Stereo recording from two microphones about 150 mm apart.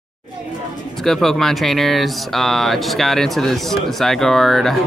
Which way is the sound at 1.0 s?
Centre (ahead or behind).